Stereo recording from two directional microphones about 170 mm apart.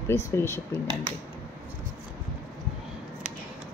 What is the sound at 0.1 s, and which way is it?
Speech, 15° left (ahead or behind).